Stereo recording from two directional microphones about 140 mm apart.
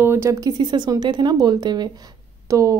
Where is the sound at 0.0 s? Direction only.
20° right (ahead or behind).